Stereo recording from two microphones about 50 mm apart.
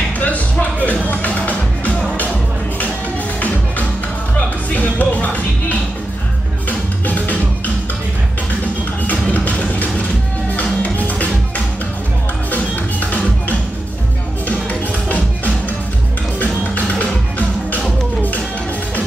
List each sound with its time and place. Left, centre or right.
0.2 s music: left
3.3 s music: left
4.9 s music: left
7.1 s music: left
9.3 s music: left
15.0 s music: left
16.7 s music: left